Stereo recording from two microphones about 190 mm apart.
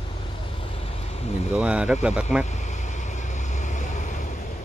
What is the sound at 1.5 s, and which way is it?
Speech, 5° right (ahead or behind).